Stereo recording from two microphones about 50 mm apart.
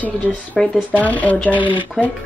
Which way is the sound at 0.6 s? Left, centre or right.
Centre.